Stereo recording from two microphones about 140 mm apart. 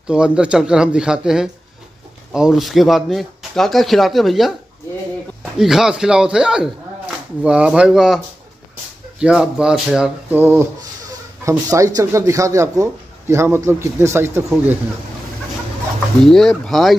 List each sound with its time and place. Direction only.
0.1 s speech: 5° right (ahead or behind)
9.2 s speech: 5° right (ahead or behind)
10.3 s rub: 15° right (ahead or behind)
11.4 s a man's voice: 25° right (ahead or behind)
16.3 s speech: 5° left (ahead or behind)